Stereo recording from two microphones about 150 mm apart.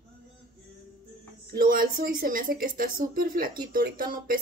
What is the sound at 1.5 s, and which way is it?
A woman's voice, 70° right (ahead or behind).